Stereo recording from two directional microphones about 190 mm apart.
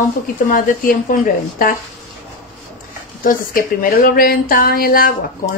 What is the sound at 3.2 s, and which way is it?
Speech, 50° left (ahead or behind).